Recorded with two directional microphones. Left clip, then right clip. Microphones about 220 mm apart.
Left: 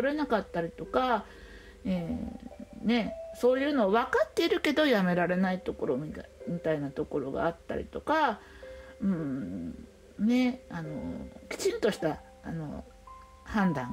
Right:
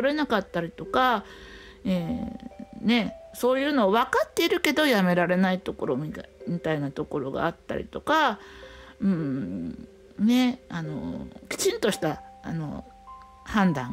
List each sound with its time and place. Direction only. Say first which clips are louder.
0.0 s speech: right 4 dB; 25° right (ahead or behind)